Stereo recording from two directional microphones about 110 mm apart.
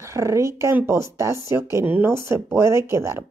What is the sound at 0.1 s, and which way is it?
Speech, 25° right (ahead or behind).